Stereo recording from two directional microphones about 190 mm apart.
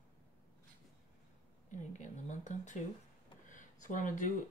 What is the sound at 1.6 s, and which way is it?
Speech, 40° left (ahead or behind).